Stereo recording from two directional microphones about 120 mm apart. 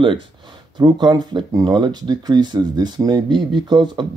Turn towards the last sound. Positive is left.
turn(degrees=-40)  # may be behind; listen again after turning